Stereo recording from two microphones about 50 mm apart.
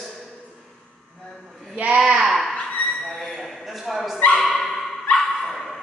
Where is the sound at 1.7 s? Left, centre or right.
Right.